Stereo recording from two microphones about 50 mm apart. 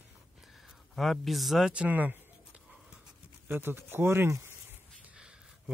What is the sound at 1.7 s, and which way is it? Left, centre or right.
Speech, right.